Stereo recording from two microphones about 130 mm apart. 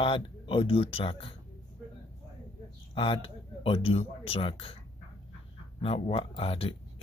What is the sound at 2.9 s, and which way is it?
Speech, 40° left (ahead or behind).